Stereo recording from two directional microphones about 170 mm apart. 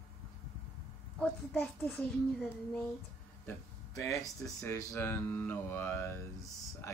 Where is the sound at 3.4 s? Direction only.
15° left (ahead or behind).